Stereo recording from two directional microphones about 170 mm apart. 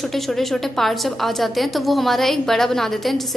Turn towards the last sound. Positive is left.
turn(degrees=0)  # may be behind; listen again after turning